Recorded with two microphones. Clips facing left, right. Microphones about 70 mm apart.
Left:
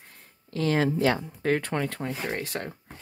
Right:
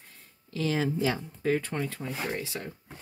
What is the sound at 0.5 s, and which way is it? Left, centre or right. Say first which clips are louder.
Speech: left 4 dB; left.